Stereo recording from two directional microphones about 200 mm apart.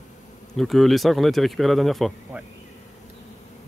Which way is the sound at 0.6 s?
Centre (ahead or behind).